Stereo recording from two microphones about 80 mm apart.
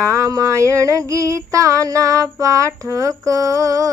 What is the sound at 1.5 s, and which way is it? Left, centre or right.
Child singing, right.